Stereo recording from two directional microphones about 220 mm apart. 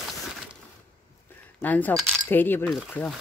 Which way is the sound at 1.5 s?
5° left (ahead or behind).